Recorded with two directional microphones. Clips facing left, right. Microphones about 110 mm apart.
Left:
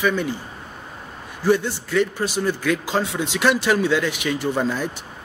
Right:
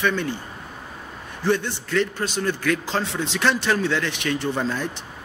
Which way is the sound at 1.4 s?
10° left (ahead or behind).